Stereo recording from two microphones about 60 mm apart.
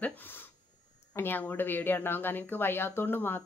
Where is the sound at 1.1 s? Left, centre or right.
Left.